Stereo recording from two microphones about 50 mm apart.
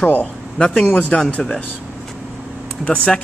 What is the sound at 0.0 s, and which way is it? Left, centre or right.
Speech, left.